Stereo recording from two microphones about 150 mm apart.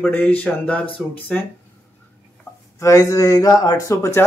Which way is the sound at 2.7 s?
20° left (ahead or behind).